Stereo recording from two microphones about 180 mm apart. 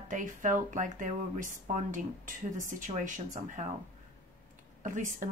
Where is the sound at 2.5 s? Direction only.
45° right (ahead or behind).